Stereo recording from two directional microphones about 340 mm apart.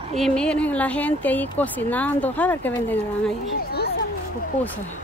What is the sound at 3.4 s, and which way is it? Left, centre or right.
Speech, left.